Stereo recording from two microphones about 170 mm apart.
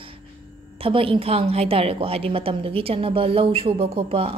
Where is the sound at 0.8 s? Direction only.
30° right (ahead or behind).